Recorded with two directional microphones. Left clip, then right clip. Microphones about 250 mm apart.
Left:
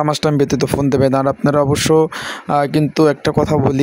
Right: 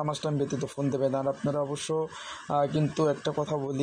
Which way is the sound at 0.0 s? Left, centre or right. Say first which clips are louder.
Left 15 dB; left.